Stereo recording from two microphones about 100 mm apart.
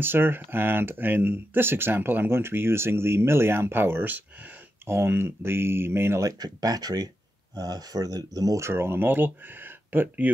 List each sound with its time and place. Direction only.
0.0 s speech: 20° right (ahead or behind)
6.4 s speech: 40° right (ahead or behind); by 10.3 s 20° right (ahead or behind)